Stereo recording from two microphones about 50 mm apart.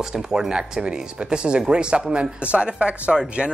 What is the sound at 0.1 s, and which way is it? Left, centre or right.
Speech, centre.